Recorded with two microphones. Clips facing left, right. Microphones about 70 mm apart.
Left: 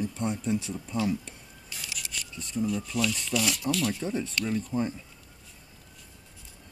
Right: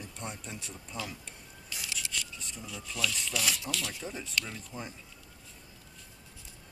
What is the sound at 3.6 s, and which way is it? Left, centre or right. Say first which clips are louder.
Speech: left 9 dB; centre.